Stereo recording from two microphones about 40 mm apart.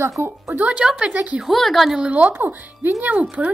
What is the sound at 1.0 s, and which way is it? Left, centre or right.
Speech, right.